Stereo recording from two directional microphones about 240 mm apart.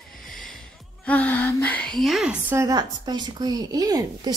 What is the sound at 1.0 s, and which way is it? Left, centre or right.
A woman's voice, centre.